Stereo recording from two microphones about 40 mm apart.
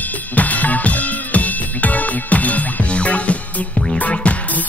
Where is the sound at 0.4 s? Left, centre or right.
Left.